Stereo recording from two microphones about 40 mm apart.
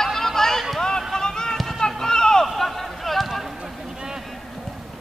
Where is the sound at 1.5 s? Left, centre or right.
Centre.